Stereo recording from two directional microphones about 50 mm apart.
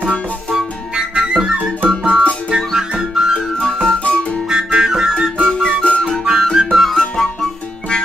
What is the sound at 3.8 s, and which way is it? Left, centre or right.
Music, centre.